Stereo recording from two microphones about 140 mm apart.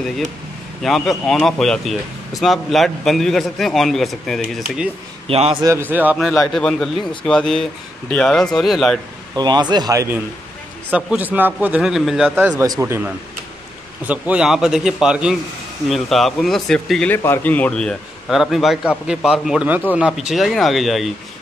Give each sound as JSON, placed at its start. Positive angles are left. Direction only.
{"t": 0.8, "sound": "speech", "side_deg": 0}
{"t": 5.3, "sound": "a man's voice", "side_deg": -45}
{"t": 5.6, "sound": "a man's voice", "side_deg": -20}
{"t": 6.4, "sound": "speech", "side_deg": 0}
{"t": 9.3, "sound": "speech", "side_deg": -30}
{"t": 10.9, "sound": "a man's voice", "side_deg": -10}
{"t": 12.4, "sound": "a man's voice", "side_deg": -15}
{"t": 17.1, "sound": "speech", "side_deg": 15}